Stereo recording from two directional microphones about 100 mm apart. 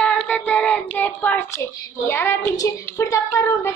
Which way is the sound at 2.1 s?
20° left (ahead or behind).